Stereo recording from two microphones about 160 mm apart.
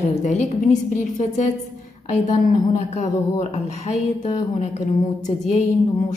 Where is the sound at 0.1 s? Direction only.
45° left (ahead or behind).